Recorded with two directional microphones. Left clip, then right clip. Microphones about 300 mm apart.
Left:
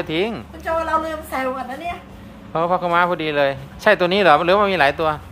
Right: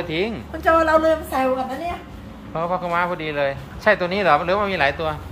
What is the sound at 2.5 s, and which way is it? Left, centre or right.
Speech, left.